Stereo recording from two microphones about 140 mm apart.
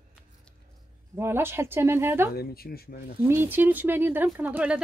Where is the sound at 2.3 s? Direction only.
90° left.